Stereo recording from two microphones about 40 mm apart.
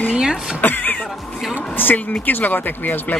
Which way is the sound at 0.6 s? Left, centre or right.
Left.